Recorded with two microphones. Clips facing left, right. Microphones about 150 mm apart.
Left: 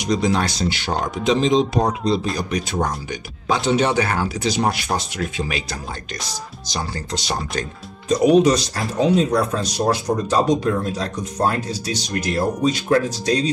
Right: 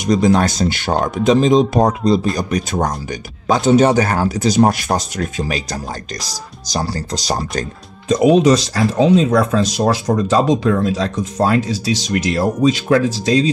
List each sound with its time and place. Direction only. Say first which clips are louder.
0.0 s speech: right 6 dB; 50° right (ahead or behind)
8.1 s speech: right 3 dB; 90° right